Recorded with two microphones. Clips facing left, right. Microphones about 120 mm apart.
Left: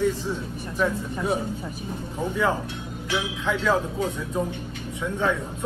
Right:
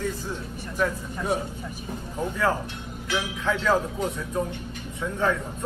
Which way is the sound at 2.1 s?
10° left (ahead or behind).